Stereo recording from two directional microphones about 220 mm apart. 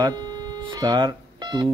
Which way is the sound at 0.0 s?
15° right (ahead or behind).